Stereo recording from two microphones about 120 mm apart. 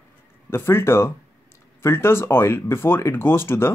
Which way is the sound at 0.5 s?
20° left (ahead or behind).